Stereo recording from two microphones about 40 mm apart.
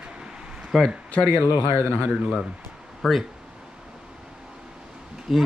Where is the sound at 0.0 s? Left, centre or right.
Right.